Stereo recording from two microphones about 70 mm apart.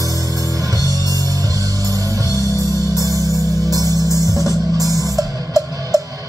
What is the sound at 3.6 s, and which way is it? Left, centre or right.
Music, right.